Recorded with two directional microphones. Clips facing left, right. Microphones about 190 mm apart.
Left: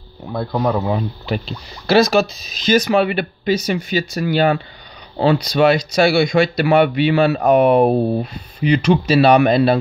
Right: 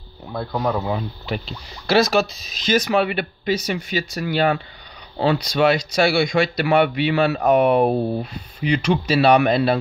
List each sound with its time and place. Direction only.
0.3 s speech: 25° left (ahead or behind)
1.9 s speech: 40° left (ahead or behind)